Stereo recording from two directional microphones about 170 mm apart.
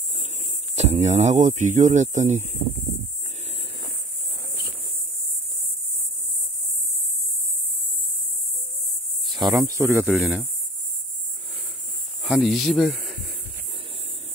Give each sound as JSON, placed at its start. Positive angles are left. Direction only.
{"t": 0.7, "sound": "speech", "side_deg": -40}
{"t": 9.3, "sound": "speech", "side_deg": -20}
{"t": 10.1, "sound": "speech", "side_deg": -5}
{"t": 12.2, "sound": "speech", "side_deg": 0}